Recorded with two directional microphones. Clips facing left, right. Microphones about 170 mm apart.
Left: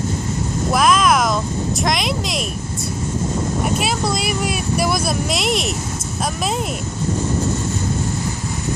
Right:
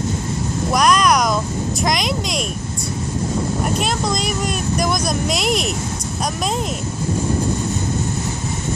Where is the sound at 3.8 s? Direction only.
5° left (ahead or behind).